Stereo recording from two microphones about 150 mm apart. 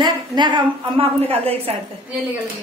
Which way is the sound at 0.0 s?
30° right (ahead or behind).